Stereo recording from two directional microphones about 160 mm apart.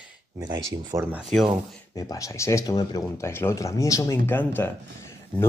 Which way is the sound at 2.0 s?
20° left (ahead or behind).